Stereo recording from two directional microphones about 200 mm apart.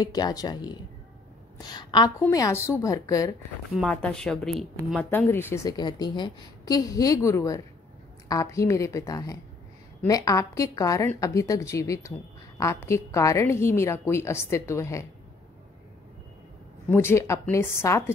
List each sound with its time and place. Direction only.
0.0 s speech: 20° left (ahead or behind)
3.7 s speech: 5° left (ahead or behind)
16.9 s speech: 10° left (ahead or behind)